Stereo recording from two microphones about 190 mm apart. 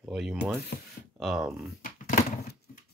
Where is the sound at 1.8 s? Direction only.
40° left (ahead or behind).